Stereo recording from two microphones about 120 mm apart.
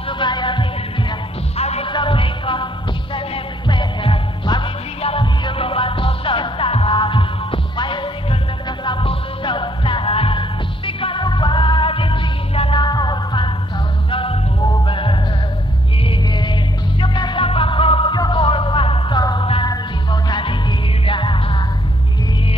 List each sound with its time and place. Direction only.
0.2 s music: 40° left (ahead or behind)
1.6 s hum: 60° left (ahead or behind)
1.9 s music: 45° left (ahead or behind)
19.4 s music: 50° left (ahead or behind)
19.7 s music: 40° left (ahead or behind)